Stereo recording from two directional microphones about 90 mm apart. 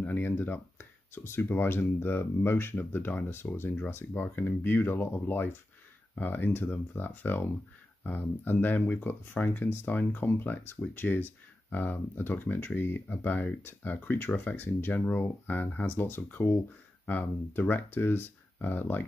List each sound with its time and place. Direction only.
0.0 s speech: 25° left (ahead or behind)